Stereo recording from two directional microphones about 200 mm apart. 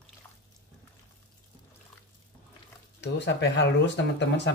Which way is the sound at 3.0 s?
60° left (ahead or behind).